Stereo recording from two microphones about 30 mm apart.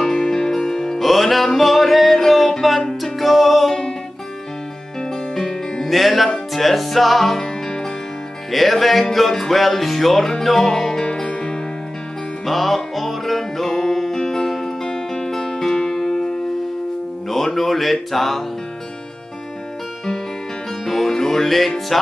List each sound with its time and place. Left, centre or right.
0.3 s music: centre
0.9 s music: centre
5.3 s music: centre
5.9 s music: centre
7.6 s music: left
8.5 s music: centre
11.2 s music: left
12.4 s music: centre
17.3 s a sound: centre
20.8 s music: centre